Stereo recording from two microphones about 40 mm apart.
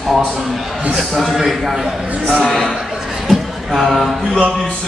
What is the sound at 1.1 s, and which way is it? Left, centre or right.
Speech, centre.